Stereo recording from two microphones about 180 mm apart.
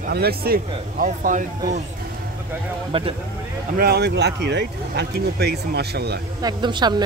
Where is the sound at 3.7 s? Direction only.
60° right (ahead or behind).